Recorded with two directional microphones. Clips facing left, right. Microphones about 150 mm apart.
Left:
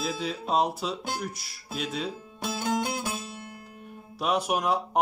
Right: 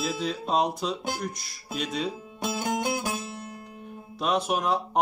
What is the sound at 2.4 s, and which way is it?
Music, 15° right (ahead or behind).